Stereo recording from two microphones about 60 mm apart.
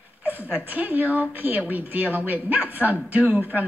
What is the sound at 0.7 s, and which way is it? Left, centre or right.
A woman's voice, right.